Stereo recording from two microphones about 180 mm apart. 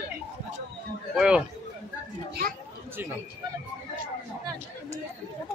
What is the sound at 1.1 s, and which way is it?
Speech, 5° right (ahead or behind).